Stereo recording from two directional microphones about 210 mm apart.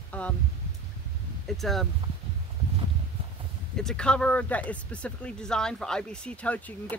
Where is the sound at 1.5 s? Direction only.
Centre (ahead or behind).